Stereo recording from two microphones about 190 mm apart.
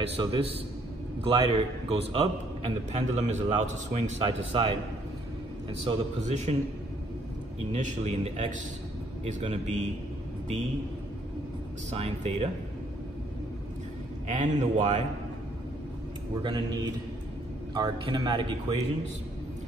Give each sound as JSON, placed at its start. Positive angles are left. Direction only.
{"t": 0.2, "sound": "a man's voice", "side_deg": -30}
{"t": 5.9, "sound": "a man's voice", "side_deg": -35}
{"t": 7.7, "sound": "a man's voice", "side_deg": -35}
{"t": 11.9, "sound": "a man's voice", "side_deg": -35}
{"t": 14.2, "sound": "a man's voice", "side_deg": -40}
{"t": 16.4, "sound": "speech", "side_deg": -20}